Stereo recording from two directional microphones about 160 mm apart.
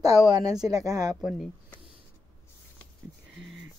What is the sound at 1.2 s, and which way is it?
Speech, centre (ahead or behind).